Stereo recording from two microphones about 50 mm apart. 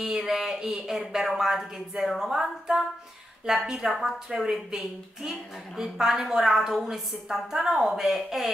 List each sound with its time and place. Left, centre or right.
0.0 s a woman's voice: centre